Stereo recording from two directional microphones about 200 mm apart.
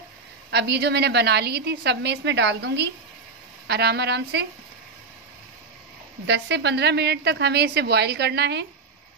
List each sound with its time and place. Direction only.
0.5 s a woman's voice: 55° right (ahead or behind)
6.2 s a woman's voice: 60° right (ahead or behind)